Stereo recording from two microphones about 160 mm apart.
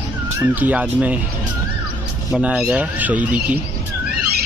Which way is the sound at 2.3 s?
5° right (ahead or behind).